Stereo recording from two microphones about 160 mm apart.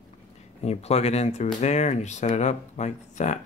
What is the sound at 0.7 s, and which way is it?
Speech, 40° left (ahead or behind).